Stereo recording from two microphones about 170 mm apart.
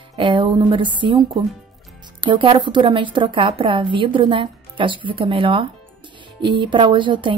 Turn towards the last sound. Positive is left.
turn(degrees=-30)  # may be behind; listen again after turning